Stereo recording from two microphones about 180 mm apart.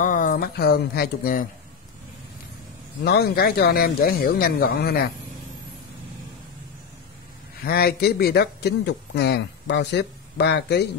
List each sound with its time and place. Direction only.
0.0 s speech: 50° left (ahead or behind)
3.0 s speech: 60° left (ahead or behind)
7.6 s speech: 60° left (ahead or behind)